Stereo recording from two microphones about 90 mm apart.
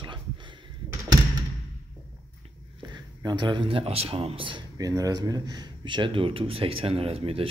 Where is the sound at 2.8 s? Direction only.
55° right (ahead or behind); by 4.6 s 80° right.